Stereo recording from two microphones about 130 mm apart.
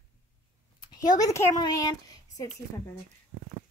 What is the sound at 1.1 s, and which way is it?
Speech, 25° left (ahead or behind).